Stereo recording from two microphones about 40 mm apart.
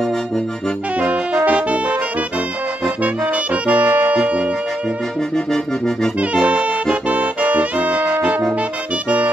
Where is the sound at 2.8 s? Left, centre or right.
Right.